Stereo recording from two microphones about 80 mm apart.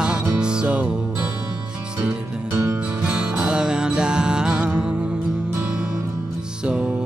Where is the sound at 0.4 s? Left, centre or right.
Centre.